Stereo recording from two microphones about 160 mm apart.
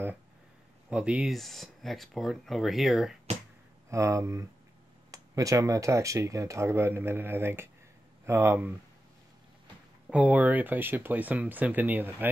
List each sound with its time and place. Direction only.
0.8 s speech: 5° right (ahead or behind)
3.9 s speech: 20° right (ahead or behind)
10.0 s speech: 10° right (ahead or behind)